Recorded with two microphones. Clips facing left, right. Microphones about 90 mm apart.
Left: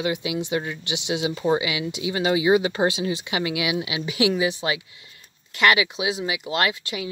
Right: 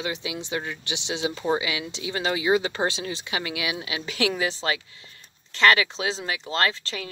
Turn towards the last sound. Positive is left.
turn(degrees=15)  # may be behind; listen again after turning